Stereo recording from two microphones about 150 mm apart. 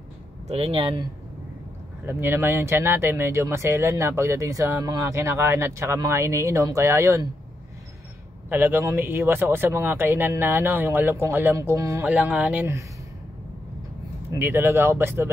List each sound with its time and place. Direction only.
0.5 s speech: 40° right (ahead or behind)
2.0 s speech: 15° right (ahead or behind)
8.5 s speech: 15° right (ahead or behind)
12.1 s speech: 10° right (ahead or behind)
14.3 s speech: 15° right (ahead or behind)